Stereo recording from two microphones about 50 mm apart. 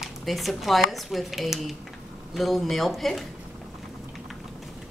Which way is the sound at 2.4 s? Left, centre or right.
Centre.